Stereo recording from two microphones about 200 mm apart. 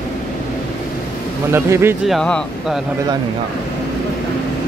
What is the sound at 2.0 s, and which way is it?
Speech, 5° left (ahead or behind).